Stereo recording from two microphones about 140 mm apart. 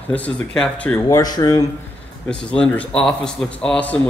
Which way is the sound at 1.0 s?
25° left (ahead or behind).